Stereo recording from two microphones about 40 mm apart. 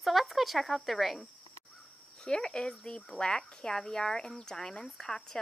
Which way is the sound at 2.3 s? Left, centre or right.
Centre.